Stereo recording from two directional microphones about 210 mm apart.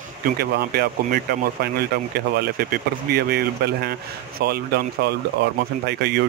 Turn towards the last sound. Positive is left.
turn(degrees=-50)  # may be behind; listen again after turning